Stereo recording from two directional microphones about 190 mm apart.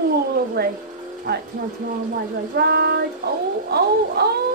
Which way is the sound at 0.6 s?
60° right (ahead or behind).